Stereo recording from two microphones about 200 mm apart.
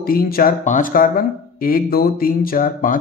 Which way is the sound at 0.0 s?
45° left (ahead or behind).